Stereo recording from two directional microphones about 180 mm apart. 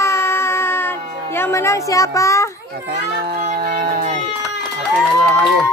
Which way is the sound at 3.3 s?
55° right (ahead or behind).